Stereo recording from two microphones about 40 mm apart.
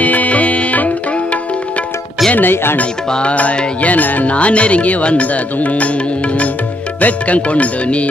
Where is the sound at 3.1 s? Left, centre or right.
Left.